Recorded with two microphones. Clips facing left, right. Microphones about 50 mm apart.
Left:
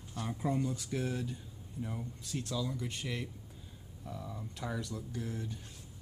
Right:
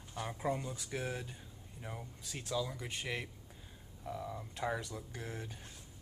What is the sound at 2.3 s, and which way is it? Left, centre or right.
Speech, centre.